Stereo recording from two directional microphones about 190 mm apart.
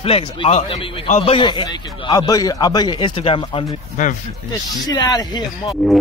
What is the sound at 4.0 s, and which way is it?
Speech, 45° left (ahead or behind).